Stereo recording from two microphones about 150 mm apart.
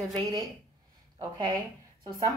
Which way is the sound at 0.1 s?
25° right (ahead or behind).